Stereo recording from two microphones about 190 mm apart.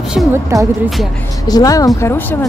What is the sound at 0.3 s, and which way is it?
Speech, 15° right (ahead or behind).